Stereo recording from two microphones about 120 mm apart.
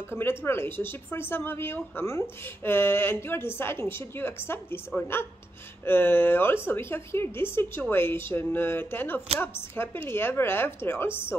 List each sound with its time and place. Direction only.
0.1 s speech: 20° left (ahead or behind)